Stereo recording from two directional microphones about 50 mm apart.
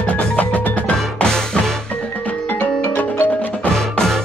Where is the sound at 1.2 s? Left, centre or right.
Centre.